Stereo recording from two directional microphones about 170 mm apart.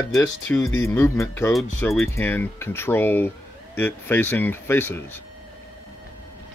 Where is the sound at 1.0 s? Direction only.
15° left (ahead or behind).